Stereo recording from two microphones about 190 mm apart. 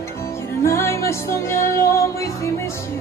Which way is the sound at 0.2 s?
15° left (ahead or behind).